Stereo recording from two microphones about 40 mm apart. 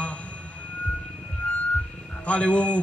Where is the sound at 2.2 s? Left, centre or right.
Left.